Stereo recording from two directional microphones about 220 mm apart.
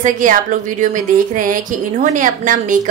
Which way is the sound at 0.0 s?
35° right (ahead or behind).